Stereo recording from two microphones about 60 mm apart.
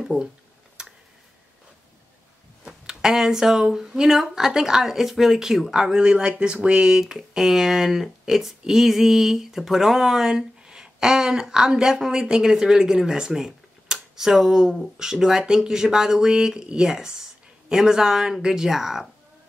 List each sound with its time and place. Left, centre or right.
2.6 s speech: centre